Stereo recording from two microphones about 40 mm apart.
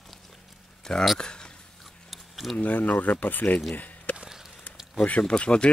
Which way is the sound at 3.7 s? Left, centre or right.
Left.